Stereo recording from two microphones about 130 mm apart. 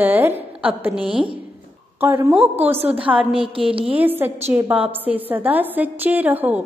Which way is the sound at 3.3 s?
45° right (ahead or behind).